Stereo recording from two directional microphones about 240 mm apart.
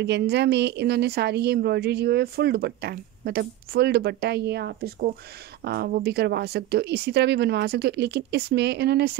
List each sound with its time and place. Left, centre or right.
0.0 s a woman's voice: right